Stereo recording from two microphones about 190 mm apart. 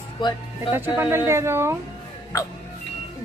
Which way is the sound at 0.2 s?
25° left (ahead or behind).